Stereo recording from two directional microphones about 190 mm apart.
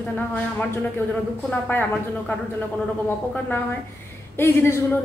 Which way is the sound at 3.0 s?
10° left (ahead or behind).